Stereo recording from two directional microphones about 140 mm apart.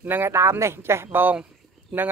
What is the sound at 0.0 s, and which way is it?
Speech, 15° right (ahead or behind).